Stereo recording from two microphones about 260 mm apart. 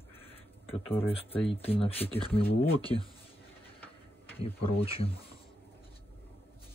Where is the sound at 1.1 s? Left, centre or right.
Left.